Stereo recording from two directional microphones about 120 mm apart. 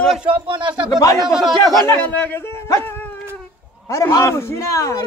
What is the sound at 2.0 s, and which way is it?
Speech, 15° left (ahead or behind).